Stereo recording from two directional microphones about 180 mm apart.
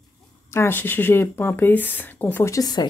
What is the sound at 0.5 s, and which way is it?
Speech, 15° left (ahead or behind).